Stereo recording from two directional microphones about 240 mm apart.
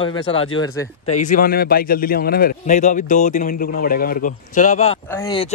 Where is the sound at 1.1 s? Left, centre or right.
Left.